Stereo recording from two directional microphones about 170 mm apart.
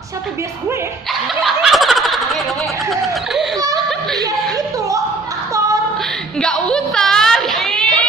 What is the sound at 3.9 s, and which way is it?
Chuckle, centre (ahead or behind).